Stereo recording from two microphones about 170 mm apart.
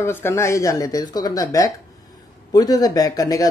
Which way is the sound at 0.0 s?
15° left (ahead or behind).